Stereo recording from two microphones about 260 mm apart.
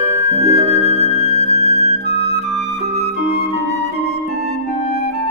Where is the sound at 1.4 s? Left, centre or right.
Left.